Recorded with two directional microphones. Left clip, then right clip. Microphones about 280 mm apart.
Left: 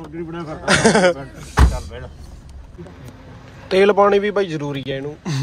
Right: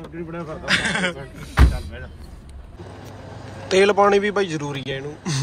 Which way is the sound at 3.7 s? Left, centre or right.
Centre.